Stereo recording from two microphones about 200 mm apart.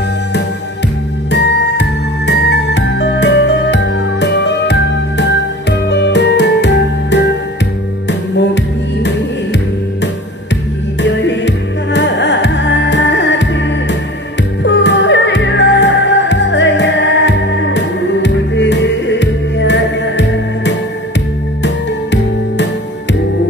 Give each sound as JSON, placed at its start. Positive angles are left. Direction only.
{"t": 1.3, "sound": "music", "side_deg": 60}
{"t": 11.0, "sound": "music", "side_deg": 60}